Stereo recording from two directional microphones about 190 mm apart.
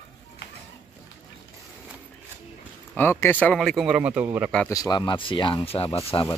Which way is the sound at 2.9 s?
10° left (ahead or behind).